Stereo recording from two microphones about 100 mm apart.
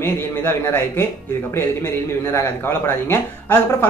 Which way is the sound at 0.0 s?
25° left (ahead or behind).